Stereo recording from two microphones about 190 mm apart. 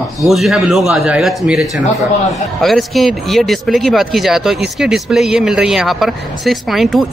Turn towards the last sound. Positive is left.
turn(degrees=0)  # may be behind; listen again after turning